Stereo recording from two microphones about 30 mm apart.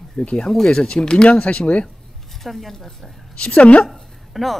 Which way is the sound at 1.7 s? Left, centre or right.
Left.